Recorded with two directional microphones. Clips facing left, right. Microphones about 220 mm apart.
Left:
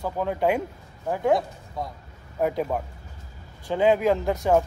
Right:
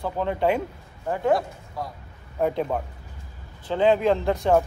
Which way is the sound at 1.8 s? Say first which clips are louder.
Left 1 dB; 20° left (ahead or behind).